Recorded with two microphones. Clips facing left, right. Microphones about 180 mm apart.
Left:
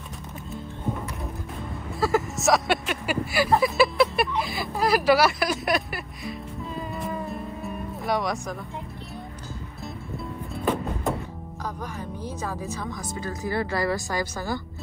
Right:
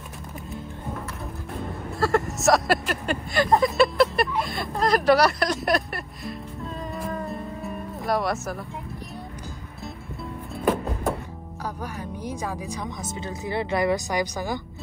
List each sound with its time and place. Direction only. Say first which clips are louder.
2.0 s speech: right 1 dB; centre (ahead or behind)
7.0 s music: right 2 dB; centre (ahead or behind)
10.5 s music: right 2 dB; centre (ahead or behind)
11.6 s speech: right 1 dB; 10° right (ahead or behind)